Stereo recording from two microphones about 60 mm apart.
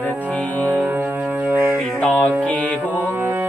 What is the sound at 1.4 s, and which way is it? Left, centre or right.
Music, right.